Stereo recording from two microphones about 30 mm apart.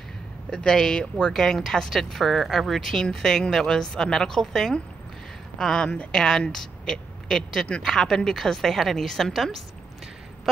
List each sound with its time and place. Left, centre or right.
0.5 s speech: left
1.3 s speech: centre
5.6 s speech: left; by 9.6 s centre